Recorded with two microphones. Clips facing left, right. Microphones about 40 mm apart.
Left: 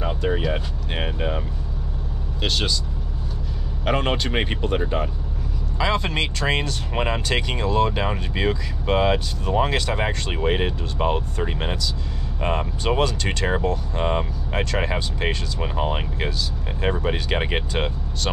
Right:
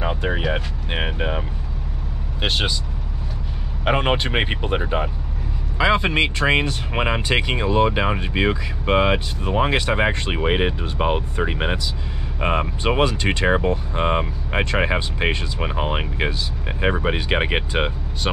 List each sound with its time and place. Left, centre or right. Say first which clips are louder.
0.0 s speech: right 1 dB; right
2.4 s speech: right 2 dB; right
3.8 s speech: right 3 dB; right